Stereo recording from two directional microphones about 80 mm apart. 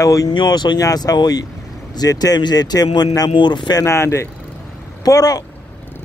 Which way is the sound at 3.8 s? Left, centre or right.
Left.